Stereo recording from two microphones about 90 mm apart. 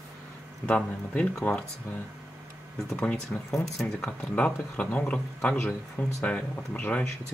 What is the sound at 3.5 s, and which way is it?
Speech, centre (ahead or behind).